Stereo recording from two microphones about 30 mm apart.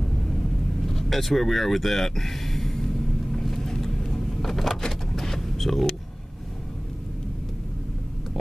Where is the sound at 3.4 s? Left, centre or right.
Centre.